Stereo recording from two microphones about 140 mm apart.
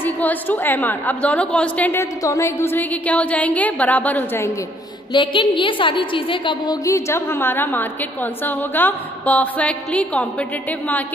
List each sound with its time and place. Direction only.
0.0 s a woman's voice: 10° left (ahead or behind)
5.1 s a woman's voice: 35° left (ahead or behind)
6.8 s a woman's voice: 20° left (ahead or behind)